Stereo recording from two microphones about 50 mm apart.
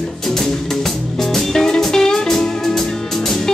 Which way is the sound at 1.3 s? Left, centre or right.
Centre.